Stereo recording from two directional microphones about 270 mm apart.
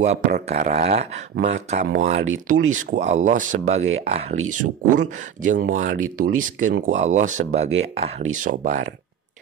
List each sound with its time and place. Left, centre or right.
0.0 s speech: right